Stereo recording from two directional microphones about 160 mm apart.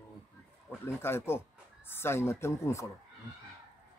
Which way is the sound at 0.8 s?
15° left (ahead or behind).